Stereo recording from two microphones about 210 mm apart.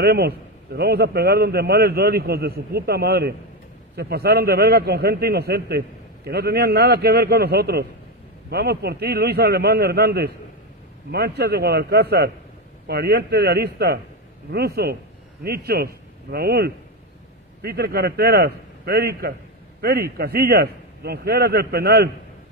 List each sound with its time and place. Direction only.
0.0 s a man's voice: 50° right (ahead or behind)